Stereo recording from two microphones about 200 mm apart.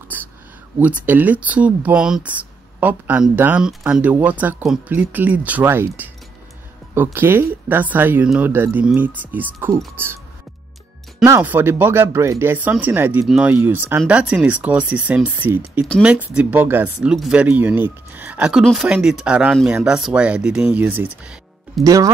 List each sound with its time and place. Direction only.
0.1 s a sound: 10° right (ahead or behind)
0.7 s speech: 10° right (ahead or behind)
11.2 s speech: 10° right (ahead or behind)
21.8 s speech: 15° right (ahead or behind)